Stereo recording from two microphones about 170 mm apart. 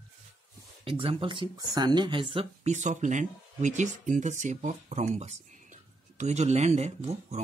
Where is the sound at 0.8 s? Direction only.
35° right (ahead or behind).